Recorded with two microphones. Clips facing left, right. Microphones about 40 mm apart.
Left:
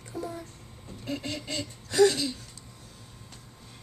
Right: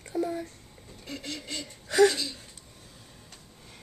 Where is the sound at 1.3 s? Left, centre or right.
Centre.